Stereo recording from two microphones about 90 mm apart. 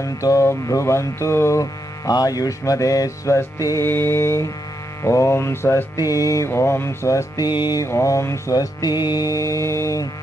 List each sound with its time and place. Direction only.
0.0 s music: 35° left (ahead or behind)
3.8 s mantra: 25° left (ahead or behind)
5.9 s music: 40° left (ahead or behind)
8.5 s music: 50° left (ahead or behind); by 10.0 s 35° left (ahead or behind)